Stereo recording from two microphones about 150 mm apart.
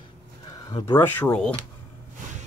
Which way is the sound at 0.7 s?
25° left (ahead or behind).